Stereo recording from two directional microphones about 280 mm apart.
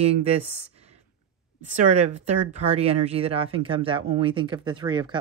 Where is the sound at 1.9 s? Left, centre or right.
Right.